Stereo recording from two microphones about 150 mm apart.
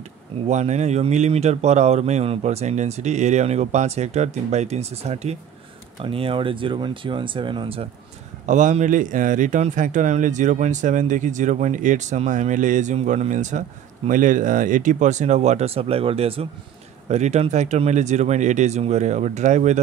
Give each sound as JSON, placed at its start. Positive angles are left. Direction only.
{"t": 0.5, "sound": "speech", "side_deg": -50}
{"t": 8.5, "sound": "speech", "side_deg": -55}